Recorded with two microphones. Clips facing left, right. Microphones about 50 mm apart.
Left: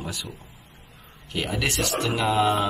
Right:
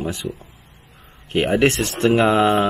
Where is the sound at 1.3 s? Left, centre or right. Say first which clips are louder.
Right 10 dB; right.